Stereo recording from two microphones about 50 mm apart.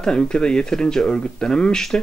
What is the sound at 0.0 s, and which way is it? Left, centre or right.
Speech, centre.